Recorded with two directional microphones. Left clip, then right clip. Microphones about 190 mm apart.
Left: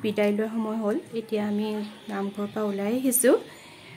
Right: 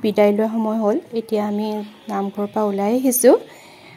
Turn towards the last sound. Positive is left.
turn(degrees=-25)  # may be behind; listen again after turning